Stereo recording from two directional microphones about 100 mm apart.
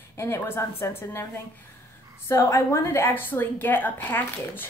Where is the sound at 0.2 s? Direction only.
25° left (ahead or behind).